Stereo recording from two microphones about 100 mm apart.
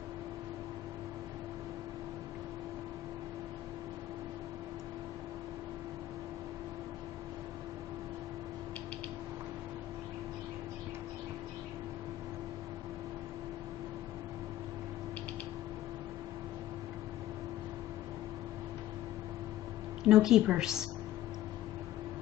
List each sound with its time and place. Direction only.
20.0 s a woman's voice: 5° right (ahead or behind)